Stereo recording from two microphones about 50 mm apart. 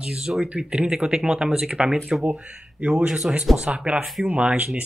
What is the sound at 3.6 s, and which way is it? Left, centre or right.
Speech, right.